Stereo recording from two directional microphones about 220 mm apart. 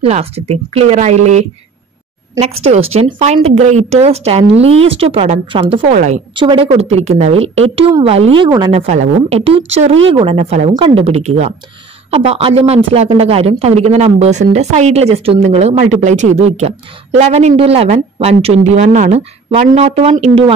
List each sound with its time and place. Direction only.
0.0 s speech: 25° right (ahead or behind)
2.6 s speech: 30° right (ahead or behind)
6.3 s speech: 20° right (ahead or behind)